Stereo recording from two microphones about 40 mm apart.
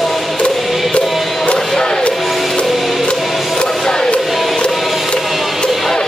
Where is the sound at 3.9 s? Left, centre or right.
Left.